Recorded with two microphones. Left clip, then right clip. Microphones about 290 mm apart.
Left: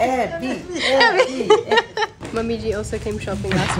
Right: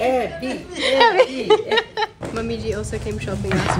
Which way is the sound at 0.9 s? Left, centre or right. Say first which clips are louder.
Right 1 dB; centre.